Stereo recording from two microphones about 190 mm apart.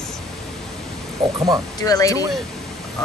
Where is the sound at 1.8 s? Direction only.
20° left (ahead or behind).